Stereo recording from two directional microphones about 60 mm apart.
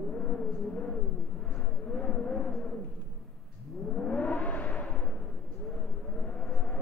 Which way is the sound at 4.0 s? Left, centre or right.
Left.